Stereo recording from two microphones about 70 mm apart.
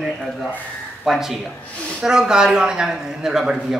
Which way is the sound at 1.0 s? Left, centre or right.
Centre.